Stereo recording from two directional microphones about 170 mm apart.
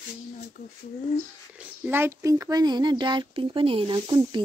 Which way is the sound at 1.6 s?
15° right (ahead or behind).